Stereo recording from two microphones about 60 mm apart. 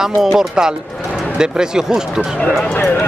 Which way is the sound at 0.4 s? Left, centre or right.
Centre.